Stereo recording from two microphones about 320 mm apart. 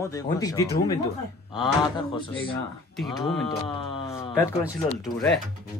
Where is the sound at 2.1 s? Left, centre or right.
Centre.